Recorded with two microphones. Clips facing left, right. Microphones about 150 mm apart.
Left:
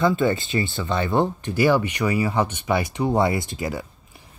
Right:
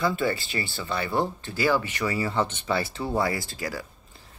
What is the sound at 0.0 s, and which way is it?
Speech, 20° left (ahead or behind).